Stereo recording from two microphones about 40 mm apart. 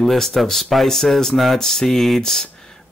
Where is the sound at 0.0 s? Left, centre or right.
Centre.